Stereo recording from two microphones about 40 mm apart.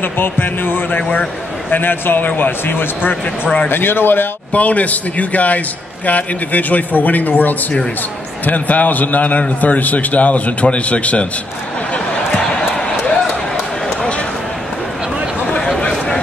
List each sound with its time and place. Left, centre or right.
0.0 s a man's voice: left
2.6 s speech: left
4.5 s a man's voice: left